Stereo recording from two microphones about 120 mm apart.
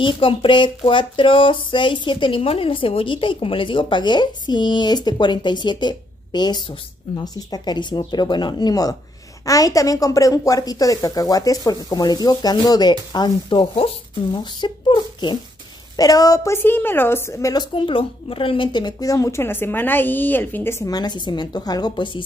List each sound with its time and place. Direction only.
0.0 s a sound: 45° left (ahead or behind)
7.2 s a woman's voice: 35° left (ahead or behind)
13.1 s a sound: 40° left (ahead or behind)
14.4 s a woman's voice: 40° left (ahead or behind)
16.5 s a woman's voice: 20° left (ahead or behind)
17.7 s a woman's voice: 45° left (ahead or behind); by 20.7 s 15° left (ahead or behind)
20.8 s a woman's voice: 35° left (ahead or behind)